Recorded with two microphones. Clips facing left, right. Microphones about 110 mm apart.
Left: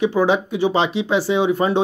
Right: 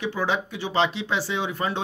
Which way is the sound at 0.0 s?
20° left (ahead or behind).